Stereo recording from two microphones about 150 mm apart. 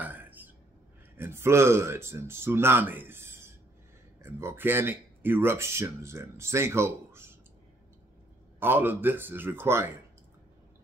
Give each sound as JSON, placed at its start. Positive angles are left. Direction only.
{"t": 0.0, "sound": "a sound", "side_deg": -10}
{"t": 1.1, "sound": "speech", "side_deg": -15}
{"t": 8.5, "sound": "speech", "side_deg": -15}